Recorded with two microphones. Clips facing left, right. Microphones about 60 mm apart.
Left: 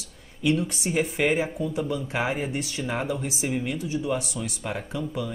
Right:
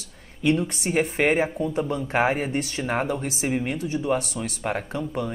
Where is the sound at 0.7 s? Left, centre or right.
Right.